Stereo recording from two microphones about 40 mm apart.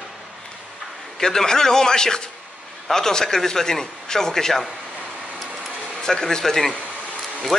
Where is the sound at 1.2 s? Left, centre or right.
Centre.